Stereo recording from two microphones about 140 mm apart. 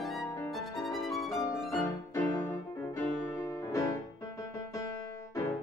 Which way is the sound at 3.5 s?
20° left (ahead or behind).